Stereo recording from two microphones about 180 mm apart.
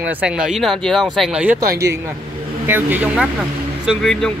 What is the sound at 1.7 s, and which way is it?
Speech, 15° right (ahead or behind).